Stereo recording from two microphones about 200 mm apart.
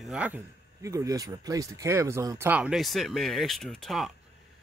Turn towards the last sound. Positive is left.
turn(degrees=0)  # may be behind; listen again after turning